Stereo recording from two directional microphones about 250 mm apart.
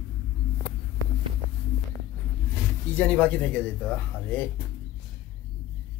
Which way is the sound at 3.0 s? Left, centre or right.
Centre.